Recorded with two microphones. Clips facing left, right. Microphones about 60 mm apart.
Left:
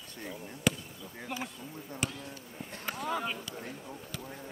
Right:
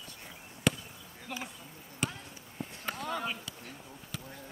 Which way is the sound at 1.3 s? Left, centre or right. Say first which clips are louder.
Left 2 dB; centre.